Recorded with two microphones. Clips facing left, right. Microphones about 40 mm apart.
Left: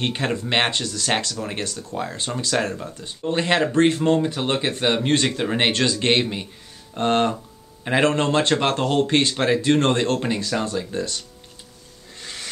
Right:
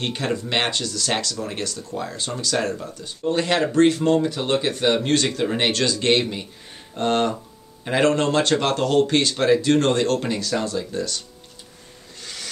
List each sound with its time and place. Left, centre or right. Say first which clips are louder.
0.0 s speech: left 1 dB; left
2.3 s speech: left 1 dB; centre
2.8 s speech: right 2 dB; left
12.2 s a sound: left 1 dB; left